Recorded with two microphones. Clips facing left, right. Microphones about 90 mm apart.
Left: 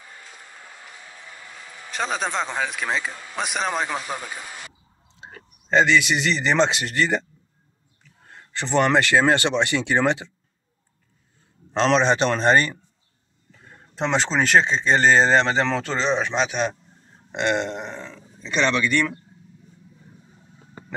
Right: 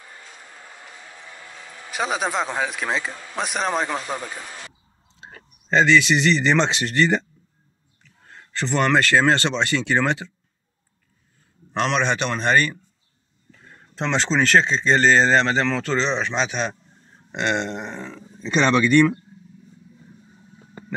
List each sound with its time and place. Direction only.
0.7 s a sound: 5° right (ahead or behind)
1.8 s speech: 5° right (ahead or behind)
8.5 s speech: 20° left (ahead or behind)
11.8 s speech: 30° left (ahead or behind)
13.9 s speech: 10° left (ahead or behind)
17.9 s speech: 15° right (ahead or behind)